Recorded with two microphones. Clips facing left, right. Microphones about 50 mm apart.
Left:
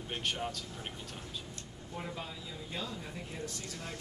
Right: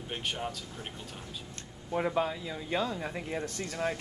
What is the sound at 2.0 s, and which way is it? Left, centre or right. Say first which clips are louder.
Speech: right 12 dB; right.